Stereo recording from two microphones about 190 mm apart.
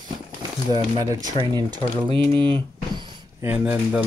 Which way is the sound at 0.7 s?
20° right (ahead or behind).